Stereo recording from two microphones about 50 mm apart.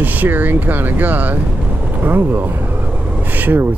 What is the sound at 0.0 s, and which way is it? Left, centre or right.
Speech, right.